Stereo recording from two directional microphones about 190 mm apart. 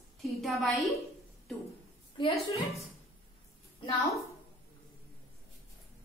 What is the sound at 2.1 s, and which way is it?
Speech, 30° left (ahead or behind).